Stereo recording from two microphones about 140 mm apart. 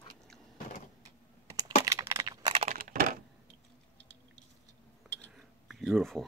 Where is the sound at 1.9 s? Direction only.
20° right (ahead or behind).